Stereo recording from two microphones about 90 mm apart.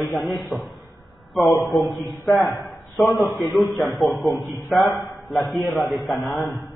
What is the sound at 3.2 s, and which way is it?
Speech, 35° left (ahead or behind).